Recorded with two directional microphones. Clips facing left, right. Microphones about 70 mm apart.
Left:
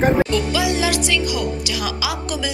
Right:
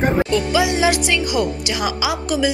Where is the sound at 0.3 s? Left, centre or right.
Centre.